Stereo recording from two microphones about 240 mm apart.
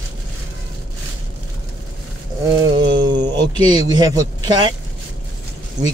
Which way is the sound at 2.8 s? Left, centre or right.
Centre.